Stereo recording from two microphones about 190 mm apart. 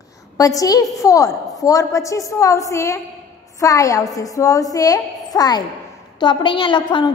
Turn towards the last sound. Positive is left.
turn(degrees=25)  # may be behind; listen again after turning